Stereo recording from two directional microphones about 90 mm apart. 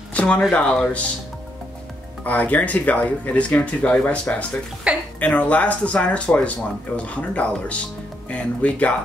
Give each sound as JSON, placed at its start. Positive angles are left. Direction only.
{"t": 0.1, "sound": "a sound", "side_deg": 15}
{"t": 0.5, "sound": "speech", "side_deg": 15}
{"t": 2.2, "sound": "speech", "side_deg": 15}
{"t": 4.9, "sound": "speech", "side_deg": -10}
{"t": 5.2, "sound": "speech", "side_deg": 15}